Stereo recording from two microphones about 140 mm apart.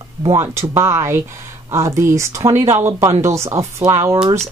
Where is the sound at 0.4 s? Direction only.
20° right (ahead or behind).